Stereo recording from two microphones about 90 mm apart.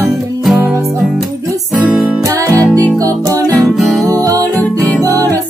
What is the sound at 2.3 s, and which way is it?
Music, 40° right (ahead or behind).